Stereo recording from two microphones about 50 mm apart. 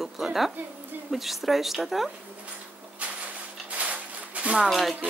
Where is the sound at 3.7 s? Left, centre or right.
Right.